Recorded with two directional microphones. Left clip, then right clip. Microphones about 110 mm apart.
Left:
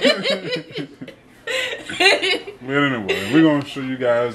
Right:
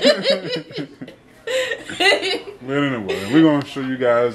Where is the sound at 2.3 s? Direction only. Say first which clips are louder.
Left 2 dB; 10° left (ahead or behind).